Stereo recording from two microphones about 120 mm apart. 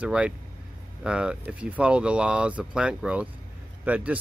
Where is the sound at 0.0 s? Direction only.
10° right (ahead or behind).